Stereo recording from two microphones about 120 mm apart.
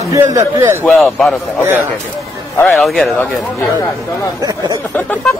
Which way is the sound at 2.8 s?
Centre (ahead or behind).